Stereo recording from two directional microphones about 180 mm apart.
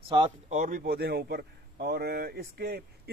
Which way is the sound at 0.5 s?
45° right (ahead or behind).